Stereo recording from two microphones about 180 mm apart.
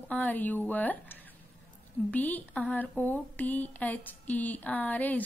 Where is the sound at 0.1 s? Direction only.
10° left (ahead or behind).